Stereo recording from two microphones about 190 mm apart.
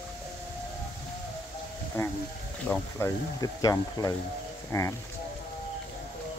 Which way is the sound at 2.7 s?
15° left (ahead or behind).